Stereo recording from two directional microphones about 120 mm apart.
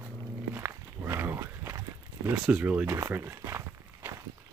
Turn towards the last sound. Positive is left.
turn(degrees=-20)  # may be behind; listen again after turning